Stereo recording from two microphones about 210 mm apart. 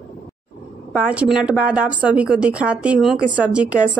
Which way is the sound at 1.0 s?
5° right (ahead or behind).